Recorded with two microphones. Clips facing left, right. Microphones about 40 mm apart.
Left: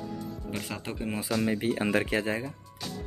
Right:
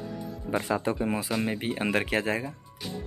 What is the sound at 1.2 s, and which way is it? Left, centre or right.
Speech, right.